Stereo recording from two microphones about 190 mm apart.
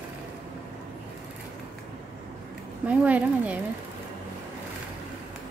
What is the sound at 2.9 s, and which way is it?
Speech, 5° right (ahead or behind).